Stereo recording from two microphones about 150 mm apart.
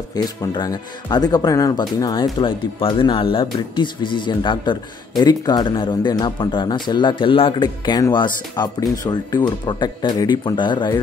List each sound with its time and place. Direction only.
0.1 s speech: 25° left (ahead or behind)